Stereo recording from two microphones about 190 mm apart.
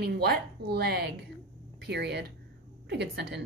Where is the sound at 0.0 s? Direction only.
55° right (ahead or behind).